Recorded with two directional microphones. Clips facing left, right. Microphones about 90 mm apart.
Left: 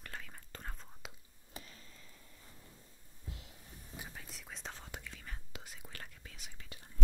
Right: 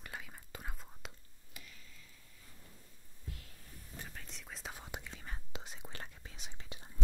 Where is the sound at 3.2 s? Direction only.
20° left (ahead or behind).